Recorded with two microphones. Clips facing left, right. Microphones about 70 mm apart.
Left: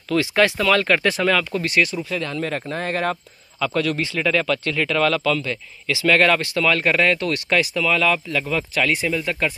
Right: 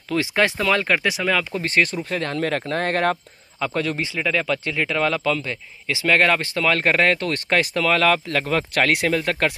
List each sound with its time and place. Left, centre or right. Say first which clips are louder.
0.1 s speech: left 2 dB; right
1.6 s speech: even; right
2.0 s speech: right 2 dB; right
3.5 s speech: left 2 dB; right